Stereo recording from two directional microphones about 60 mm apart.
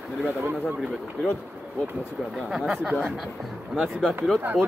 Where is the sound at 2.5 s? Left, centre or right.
Centre.